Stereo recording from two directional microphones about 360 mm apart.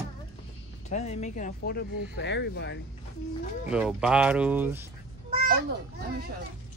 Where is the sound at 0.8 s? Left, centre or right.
Centre.